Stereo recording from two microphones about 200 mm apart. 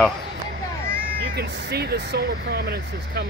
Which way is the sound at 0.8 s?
50° right (ahead or behind).